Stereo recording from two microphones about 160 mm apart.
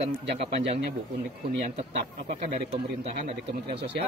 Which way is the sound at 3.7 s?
90° right.